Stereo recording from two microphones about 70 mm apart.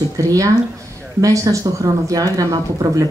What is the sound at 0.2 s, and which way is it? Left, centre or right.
A woman's voice, right.